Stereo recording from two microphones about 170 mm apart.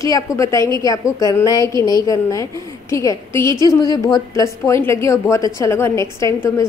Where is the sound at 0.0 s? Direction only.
20° left (ahead or behind).